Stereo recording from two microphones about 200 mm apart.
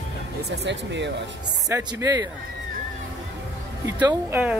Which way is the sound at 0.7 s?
60° right (ahead or behind).